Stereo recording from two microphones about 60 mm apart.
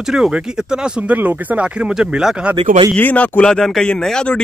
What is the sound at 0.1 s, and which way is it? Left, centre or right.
Speech, centre.